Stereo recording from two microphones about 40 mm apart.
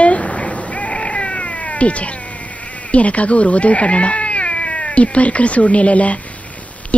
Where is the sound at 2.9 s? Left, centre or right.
Left.